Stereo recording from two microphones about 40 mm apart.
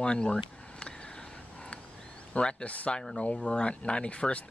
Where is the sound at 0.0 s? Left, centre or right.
Left.